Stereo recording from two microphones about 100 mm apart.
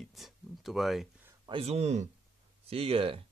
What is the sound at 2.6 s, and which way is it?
Speech, 75° right (ahead or behind).